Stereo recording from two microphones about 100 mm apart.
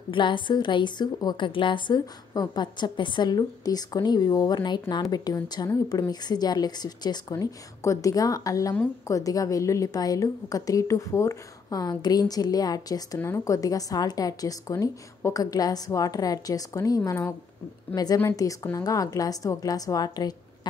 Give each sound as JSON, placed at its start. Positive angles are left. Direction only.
{"t": 0.1, "sound": "a woman's voice", "side_deg": 55}
{"t": 7.3, "sound": "a woman's voice", "side_deg": 30}